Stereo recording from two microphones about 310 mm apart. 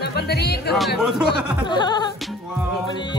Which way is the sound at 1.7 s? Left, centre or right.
Centre.